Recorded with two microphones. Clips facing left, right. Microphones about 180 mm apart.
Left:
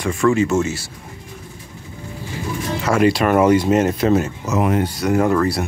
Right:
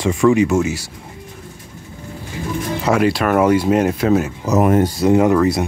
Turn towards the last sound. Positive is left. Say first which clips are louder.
# right 3 dB
turn(degrees=-15)  # may be behind; listen again after turning